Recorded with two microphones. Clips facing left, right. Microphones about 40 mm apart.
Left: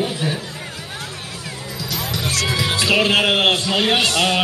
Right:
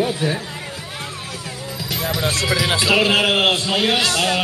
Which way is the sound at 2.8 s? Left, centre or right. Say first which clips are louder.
Left 1 dB; centre.